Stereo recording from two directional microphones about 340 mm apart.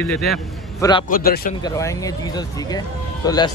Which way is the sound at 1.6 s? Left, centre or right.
Centre.